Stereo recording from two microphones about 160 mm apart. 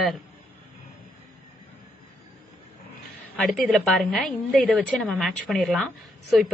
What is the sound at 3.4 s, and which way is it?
A woman's voice, centre (ahead or behind).